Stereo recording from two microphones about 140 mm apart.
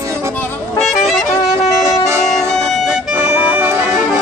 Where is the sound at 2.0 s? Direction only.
20° right (ahead or behind).